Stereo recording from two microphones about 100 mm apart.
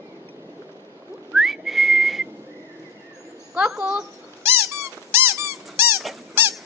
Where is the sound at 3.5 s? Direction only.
10° right (ahead or behind).